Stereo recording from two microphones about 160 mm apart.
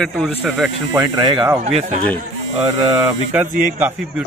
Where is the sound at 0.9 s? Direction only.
25° right (ahead or behind).